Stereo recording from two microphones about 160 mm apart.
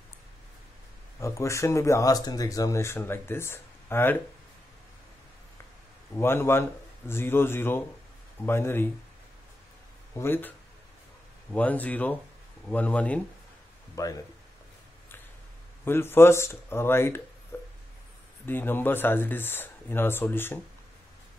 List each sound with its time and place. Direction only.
1.2 s speech: 20° left (ahead or behind)
6.1 s speech: 15° left (ahead or behind)
10.1 s speech: 15° left (ahead or behind)
11.5 s speech: 10° left (ahead or behind)
14.0 s speech: 20° left (ahead or behind)
15.8 s speech: 15° left (ahead or behind)
18.4 s speech: 15° left (ahead or behind)